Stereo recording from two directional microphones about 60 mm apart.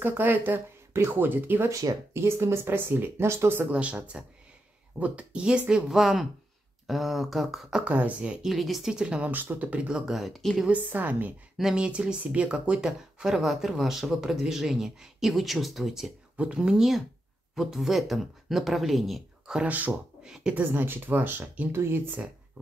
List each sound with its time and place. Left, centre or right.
0.0 s speech: right
1.7 s speech: right
2.1 s speech: right
3.7 s speech: centre
5.9 s speech: centre
7.7 s speech: right
8.5 s speech: centre
8.9 s speech: centre
9.3 s speech: right; by 10.5 s centre
10.7 s speech: right
11.7 s speech: centre
16.3 s speech: centre
19.4 s speech: centre
20.5 s speech: right